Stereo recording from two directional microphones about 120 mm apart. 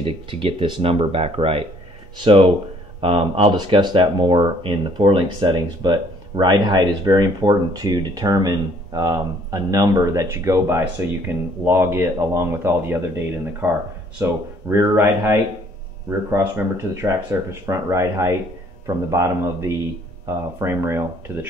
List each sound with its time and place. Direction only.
0.0 s speech: 45° right (ahead or behind)
3.5 s speech: 40° right (ahead or behind); by 21.5 s 20° right (ahead or behind)